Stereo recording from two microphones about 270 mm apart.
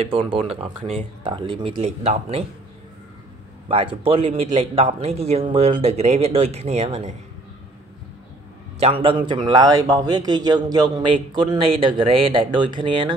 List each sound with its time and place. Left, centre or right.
0.3 s speech: centre
3.6 s speech: centre
8.7 s a man's voice: right